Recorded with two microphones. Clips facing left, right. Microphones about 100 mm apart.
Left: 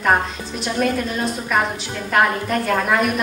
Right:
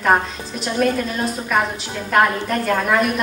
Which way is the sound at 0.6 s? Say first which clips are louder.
Right 1 dB; centre (ahead or behind).